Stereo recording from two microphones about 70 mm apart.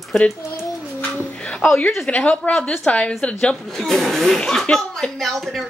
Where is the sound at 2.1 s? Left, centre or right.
Centre.